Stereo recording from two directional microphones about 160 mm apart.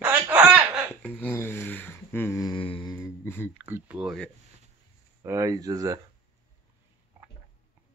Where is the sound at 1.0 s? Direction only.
10° left (ahead or behind).